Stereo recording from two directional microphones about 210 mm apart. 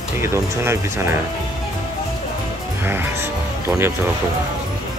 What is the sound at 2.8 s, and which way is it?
Speech, 10° right (ahead or behind).